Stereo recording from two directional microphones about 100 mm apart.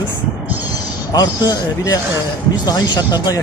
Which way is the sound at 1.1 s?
40° left (ahead or behind).